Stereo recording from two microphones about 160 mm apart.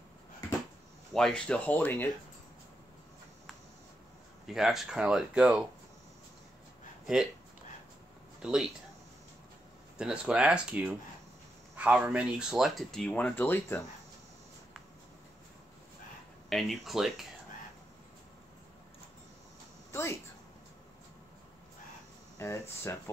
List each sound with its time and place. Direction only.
1.1 s speech: 5° left (ahead or behind)
4.5 s speech: centre (ahead or behind)
8.4 s speech: 5° right (ahead or behind)
9.9 s speech: 5° right (ahead or behind); by 13.8 s 15° left (ahead or behind)
16.4 s speech: centre (ahead or behind)
19.9 s a sound: 15° left (ahead or behind)
22.4 s speech: 15° left (ahead or behind)